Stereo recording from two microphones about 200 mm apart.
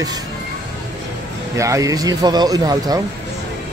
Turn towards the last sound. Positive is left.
turn(degrees=-20)  # may be behind; listen again after turning